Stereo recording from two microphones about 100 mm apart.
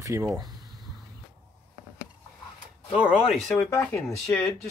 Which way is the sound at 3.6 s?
30° left (ahead or behind).